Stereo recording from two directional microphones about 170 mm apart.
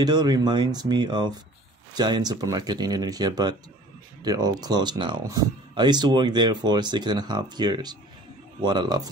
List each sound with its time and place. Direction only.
0.0 s speech: 25° right (ahead or behind)